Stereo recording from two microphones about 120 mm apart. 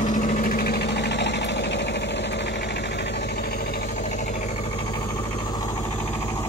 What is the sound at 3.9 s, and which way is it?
Vehicle, 90° left.